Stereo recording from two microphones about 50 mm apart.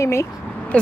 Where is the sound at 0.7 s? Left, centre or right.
Left.